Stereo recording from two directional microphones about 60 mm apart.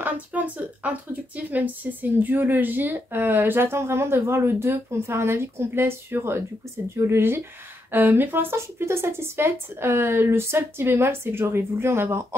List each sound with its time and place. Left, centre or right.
0.0 s speech: right